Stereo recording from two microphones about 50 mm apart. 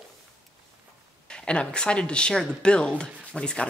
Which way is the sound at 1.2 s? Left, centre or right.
Centre.